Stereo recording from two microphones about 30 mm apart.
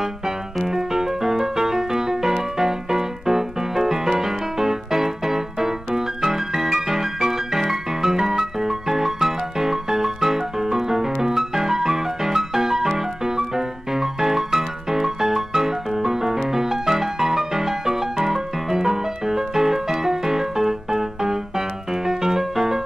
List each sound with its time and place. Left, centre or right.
0.7 s music: centre